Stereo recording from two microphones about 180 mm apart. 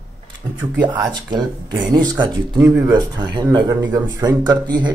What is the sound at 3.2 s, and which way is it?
Speech, 25° right (ahead or behind).